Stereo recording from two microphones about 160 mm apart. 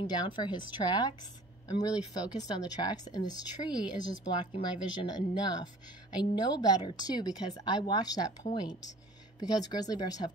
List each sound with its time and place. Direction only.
0.0 s speech: 30° left (ahead or behind)